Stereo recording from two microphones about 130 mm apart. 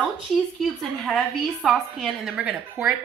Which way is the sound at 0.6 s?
Centre (ahead or behind).